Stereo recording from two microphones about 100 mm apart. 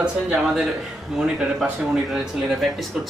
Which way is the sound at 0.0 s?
5° right (ahead or behind).